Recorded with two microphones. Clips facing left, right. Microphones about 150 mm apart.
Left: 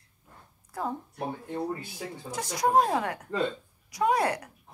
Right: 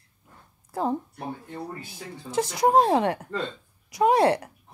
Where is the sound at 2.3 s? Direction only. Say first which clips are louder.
Right 4 dB; 25° right (ahead or behind).